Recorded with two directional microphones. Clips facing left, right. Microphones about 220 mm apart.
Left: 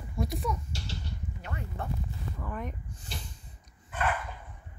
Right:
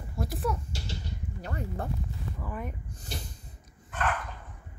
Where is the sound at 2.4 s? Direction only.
5° right (ahead or behind).